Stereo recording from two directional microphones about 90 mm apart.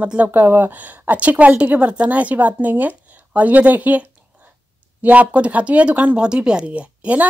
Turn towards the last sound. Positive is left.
turn(degrees=-15)  # may be behind; listen again after turning